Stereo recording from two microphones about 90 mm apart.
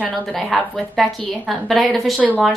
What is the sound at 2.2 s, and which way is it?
Speech, 15° right (ahead or behind).